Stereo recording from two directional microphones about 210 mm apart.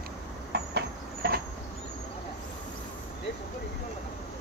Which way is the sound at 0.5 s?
50° right (ahead or behind).